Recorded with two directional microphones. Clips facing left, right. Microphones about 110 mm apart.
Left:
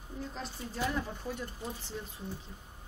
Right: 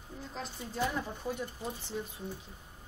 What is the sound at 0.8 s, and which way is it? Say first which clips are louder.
Speech: left 2 dB; 10° right (ahead or behind).